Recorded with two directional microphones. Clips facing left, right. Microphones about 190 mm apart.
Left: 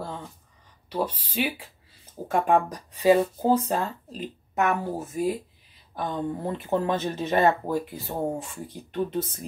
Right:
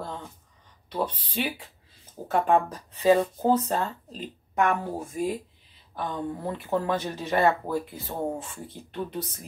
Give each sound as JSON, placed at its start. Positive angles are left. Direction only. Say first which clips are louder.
{"t": 0.8, "sound": "speech", "louder": "left 1 dB", "side_deg": 10}
{"t": 5.9, "sound": "speech", "louder": "left 2 dB", "side_deg": 20}
{"t": 8.9, "sound": "speech", "louder": "left 5 dB", "side_deg": 25}